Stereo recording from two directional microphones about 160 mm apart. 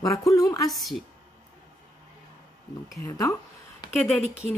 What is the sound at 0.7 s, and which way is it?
Speech, centre (ahead or behind).